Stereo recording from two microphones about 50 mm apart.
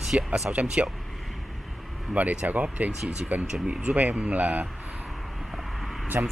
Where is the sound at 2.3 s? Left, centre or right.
Right.